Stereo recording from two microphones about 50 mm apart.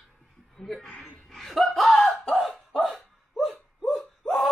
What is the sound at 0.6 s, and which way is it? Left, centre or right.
Laughter, centre.